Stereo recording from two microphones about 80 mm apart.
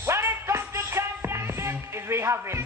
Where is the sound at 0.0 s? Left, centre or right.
Right.